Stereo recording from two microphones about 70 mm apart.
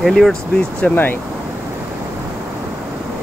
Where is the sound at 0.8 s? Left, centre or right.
Left.